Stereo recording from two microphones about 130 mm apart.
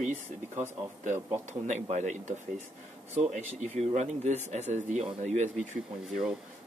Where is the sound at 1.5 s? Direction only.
65° right (ahead or behind).